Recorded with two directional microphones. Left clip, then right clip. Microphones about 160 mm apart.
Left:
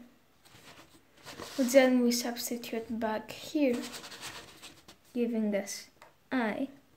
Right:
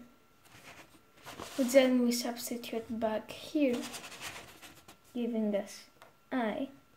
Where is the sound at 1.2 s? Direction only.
10° left (ahead or behind).